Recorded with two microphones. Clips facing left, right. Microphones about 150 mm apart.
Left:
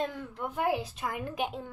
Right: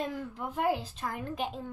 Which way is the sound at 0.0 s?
Centre (ahead or behind).